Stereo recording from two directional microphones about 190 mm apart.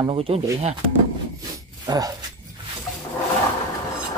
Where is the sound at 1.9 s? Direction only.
20° right (ahead or behind).